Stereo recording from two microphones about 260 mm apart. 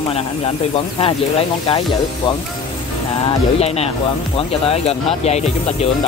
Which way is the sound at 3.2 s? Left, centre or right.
Left.